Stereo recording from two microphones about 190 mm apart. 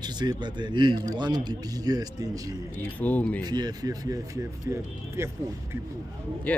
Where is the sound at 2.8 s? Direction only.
10° left (ahead or behind).